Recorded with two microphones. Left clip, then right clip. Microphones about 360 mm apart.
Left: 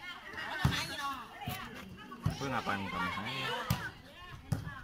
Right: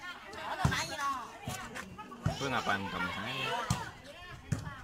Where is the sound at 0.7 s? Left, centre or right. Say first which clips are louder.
Right 2 dB; centre.